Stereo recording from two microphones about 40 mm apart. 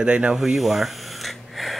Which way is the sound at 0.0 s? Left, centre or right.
Right.